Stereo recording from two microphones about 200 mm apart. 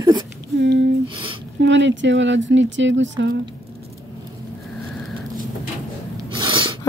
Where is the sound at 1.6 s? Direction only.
65° right (ahead or behind).